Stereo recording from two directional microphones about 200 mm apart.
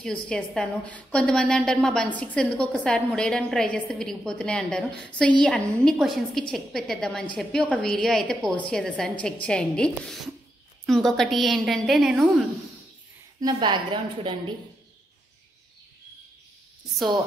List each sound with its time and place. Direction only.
0.0 s a woman's voice: 5° left (ahead or behind)
13.4 s a woman's voice: 20° right (ahead or behind)